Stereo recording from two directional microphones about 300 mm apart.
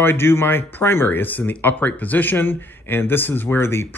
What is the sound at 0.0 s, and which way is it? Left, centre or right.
Speech, centre.